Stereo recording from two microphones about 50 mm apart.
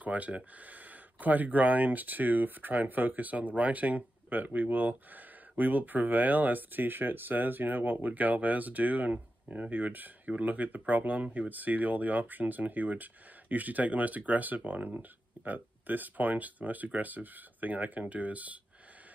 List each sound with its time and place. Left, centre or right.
0.0 s speech: right